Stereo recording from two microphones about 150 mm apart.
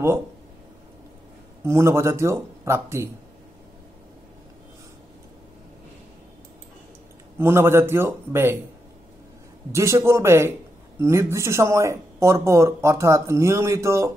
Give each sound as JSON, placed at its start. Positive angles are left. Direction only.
{"t": 1.6, "sound": "speech", "side_deg": -20}
{"t": 7.3, "sound": "a man's voice", "side_deg": -15}
{"t": 9.7, "sound": "a man's voice", "side_deg": -20}